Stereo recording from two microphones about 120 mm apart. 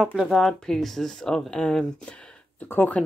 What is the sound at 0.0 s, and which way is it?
Speech, 5° right (ahead or behind).